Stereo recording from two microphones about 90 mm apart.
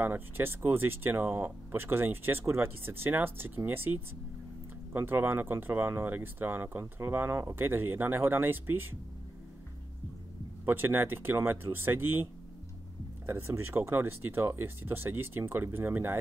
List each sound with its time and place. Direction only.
0.0 s speech: 25° right (ahead or behind)
10.6 s speech: 25° right (ahead or behind)
13.3 s speech: 25° right (ahead or behind)